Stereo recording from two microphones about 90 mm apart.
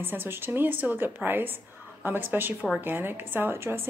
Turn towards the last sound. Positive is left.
turn(degrees=-25)  # may be behind; listen again after turning